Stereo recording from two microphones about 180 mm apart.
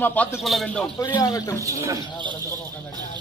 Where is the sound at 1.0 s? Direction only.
20° left (ahead or behind).